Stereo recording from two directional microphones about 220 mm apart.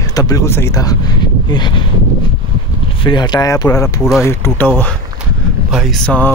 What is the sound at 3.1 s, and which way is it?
Speech, 20° left (ahead or behind).